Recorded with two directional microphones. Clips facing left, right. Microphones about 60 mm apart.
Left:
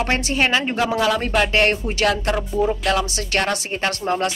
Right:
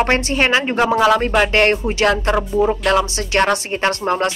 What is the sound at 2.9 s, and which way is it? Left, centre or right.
Speech, right.